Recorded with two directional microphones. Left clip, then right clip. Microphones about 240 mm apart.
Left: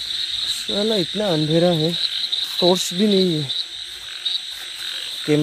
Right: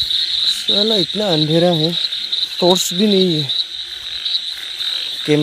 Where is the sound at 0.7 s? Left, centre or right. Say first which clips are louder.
Right 5 dB; centre.